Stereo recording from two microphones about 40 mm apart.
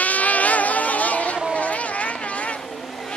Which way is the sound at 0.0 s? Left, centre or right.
Left.